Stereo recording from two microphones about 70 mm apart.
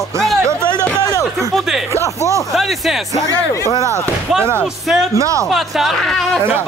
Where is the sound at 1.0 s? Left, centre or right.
Left.